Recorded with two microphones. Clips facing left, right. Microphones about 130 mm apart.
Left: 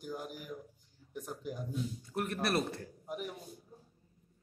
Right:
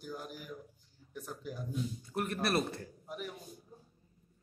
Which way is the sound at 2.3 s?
Centre (ahead or behind).